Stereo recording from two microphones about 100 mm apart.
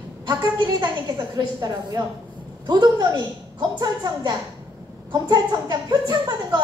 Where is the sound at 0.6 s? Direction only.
50° right (ahead or behind).